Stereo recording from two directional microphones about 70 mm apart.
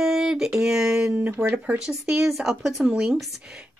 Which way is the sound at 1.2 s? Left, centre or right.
Right.